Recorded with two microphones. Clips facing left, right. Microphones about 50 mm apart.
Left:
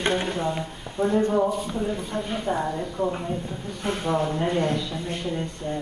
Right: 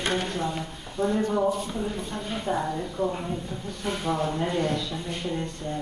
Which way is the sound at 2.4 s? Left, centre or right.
Centre.